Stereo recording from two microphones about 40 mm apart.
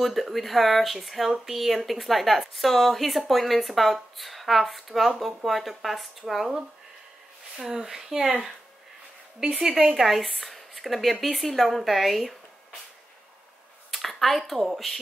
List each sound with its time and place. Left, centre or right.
0.0 s speech: centre
9.7 s speech: right
9.9 s speech: centre
13.8 s a sound: centre